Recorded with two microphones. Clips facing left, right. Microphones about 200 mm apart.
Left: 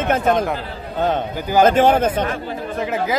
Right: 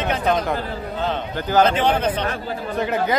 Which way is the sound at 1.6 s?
45° left (ahead or behind).